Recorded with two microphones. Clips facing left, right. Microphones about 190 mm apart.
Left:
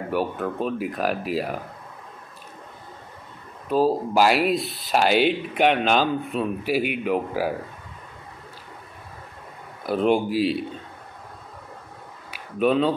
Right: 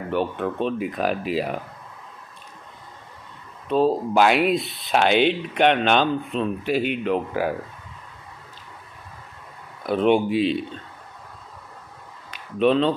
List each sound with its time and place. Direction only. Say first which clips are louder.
0.1 s speech: right 1 dB; 5° left (ahead or behind)
3.6 s speech: right 1 dB; 5° left (ahead or behind)
9.8 s speech: right 2 dB; centre (ahead or behind)
12.3 s speech: right 2 dB; 5° left (ahead or behind)